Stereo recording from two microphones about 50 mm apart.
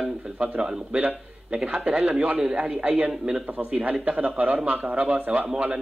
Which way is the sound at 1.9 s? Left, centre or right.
Right.